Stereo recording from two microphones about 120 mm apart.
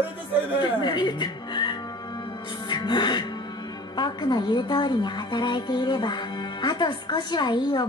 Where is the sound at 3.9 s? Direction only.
40° left (ahead or behind).